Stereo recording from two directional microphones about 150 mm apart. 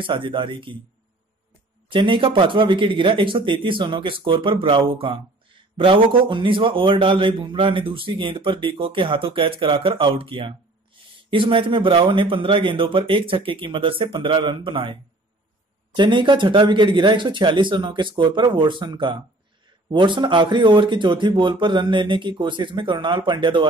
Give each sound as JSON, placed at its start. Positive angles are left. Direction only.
{"t": 0.0, "sound": "a man's voice", "side_deg": -35}
{"t": 1.9, "sound": "a man's voice", "side_deg": -35}
{"t": 16.0, "sound": "a man's voice", "side_deg": -30}